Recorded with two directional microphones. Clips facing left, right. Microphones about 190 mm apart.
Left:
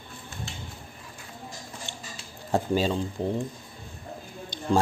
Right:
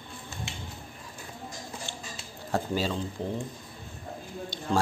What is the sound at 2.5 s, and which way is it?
Speech, 20° left (ahead or behind).